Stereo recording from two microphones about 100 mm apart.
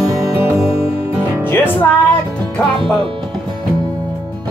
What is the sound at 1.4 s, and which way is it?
Music, 20° left (ahead or behind).